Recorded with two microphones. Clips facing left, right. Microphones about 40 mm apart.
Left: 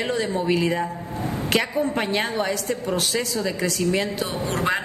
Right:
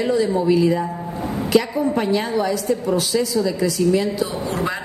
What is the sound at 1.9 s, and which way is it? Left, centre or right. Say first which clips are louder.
A woman's voice: right 4 dB; left.